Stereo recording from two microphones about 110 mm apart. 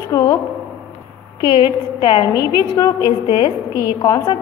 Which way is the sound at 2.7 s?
35° left (ahead or behind).